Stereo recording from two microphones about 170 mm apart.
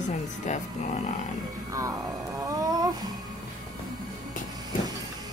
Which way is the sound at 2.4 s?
20° right (ahead or behind).